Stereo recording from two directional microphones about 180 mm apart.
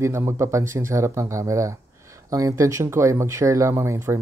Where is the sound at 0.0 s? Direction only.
15° right (ahead or behind).